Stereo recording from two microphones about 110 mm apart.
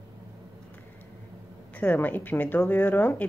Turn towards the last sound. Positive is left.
turn(degrees=15)  # may be behind; listen again after turning